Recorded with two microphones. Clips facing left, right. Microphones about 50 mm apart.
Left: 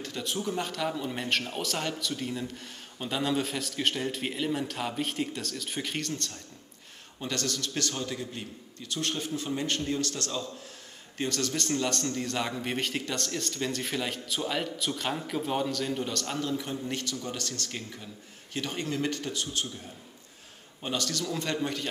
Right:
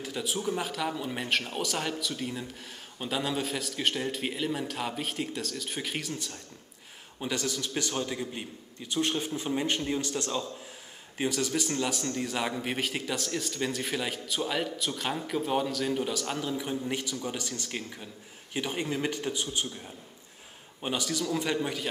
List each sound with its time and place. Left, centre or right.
0.0 s a man's voice: centre
20.8 s a man's voice: centre